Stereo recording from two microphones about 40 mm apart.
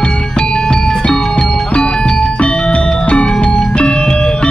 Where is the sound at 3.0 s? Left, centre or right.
Left.